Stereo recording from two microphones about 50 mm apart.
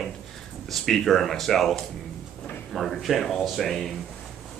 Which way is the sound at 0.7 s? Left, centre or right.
Centre.